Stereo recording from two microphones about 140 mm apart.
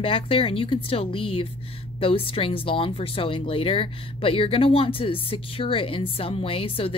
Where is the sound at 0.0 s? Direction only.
40° left (ahead or behind).